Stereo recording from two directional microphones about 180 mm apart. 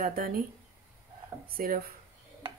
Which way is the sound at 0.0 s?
55° right (ahead or behind).